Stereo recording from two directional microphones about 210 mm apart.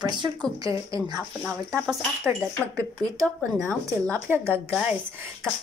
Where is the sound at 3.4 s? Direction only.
Centre (ahead or behind).